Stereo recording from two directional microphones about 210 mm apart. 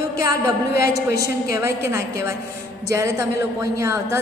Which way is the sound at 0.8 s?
50° left (ahead or behind).